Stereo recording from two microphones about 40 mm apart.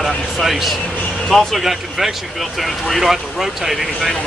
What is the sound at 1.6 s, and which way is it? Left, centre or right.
Speech, centre.